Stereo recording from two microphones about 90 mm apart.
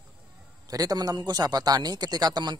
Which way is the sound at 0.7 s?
40° right (ahead or behind).